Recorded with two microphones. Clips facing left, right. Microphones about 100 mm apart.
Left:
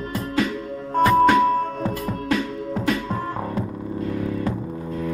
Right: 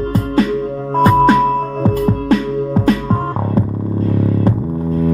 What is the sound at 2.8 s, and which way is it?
Music, 40° right (ahead or behind).